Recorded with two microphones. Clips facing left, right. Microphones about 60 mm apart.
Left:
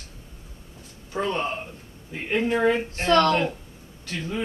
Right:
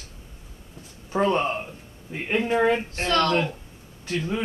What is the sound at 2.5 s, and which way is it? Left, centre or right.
Speech, centre.